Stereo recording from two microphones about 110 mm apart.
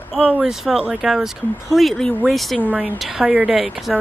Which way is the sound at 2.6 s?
10° right (ahead or behind).